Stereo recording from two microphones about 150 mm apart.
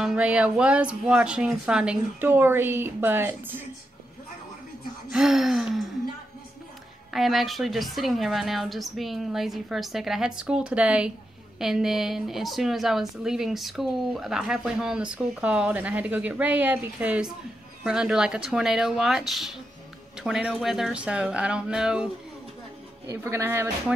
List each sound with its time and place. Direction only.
0.0 s speech: 5° right (ahead or behind)
5.1 s a woman's voice: 5° right (ahead or behind)
7.1 s a woman's voice: centre (ahead or behind)
23.0 s speech: 15° right (ahead or behind)